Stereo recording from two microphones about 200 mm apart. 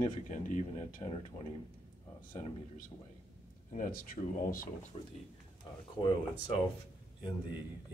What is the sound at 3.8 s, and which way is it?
Speech, 45° left (ahead or behind).